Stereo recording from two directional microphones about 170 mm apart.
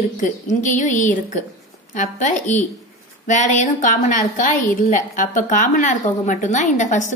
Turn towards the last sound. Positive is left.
turn(degrees=45)  # may be behind; listen again after turning